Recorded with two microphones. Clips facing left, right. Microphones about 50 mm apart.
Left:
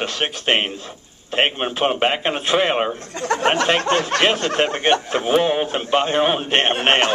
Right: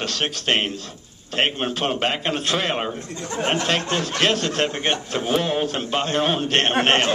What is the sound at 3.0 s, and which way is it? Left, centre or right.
Speech, left.